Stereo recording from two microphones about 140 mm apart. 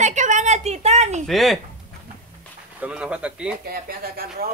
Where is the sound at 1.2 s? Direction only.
Centre (ahead or behind).